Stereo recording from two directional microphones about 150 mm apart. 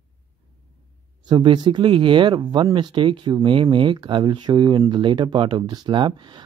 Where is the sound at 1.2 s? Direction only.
30° right (ahead or behind).